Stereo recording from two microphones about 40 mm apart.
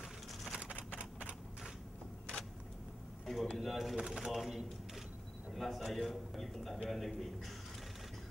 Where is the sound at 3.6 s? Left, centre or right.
Centre.